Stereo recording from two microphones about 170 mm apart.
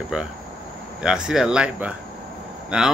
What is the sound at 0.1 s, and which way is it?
Speech, 5° right (ahead or behind).